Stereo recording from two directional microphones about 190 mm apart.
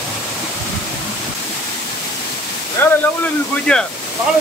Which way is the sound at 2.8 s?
10° left (ahead or behind).